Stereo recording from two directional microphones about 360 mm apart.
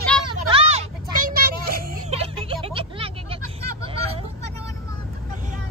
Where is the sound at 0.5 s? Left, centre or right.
Centre.